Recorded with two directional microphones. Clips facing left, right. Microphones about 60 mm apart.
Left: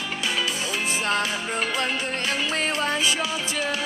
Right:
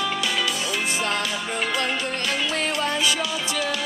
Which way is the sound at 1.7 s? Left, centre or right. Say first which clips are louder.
Right 1 dB; left.